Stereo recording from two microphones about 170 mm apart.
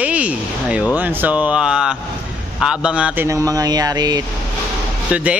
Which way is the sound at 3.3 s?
20° right (ahead or behind).